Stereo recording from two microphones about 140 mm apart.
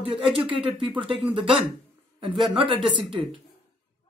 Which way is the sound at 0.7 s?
35° right (ahead or behind).